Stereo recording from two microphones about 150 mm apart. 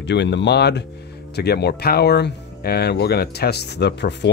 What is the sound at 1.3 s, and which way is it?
Speech, 90° left.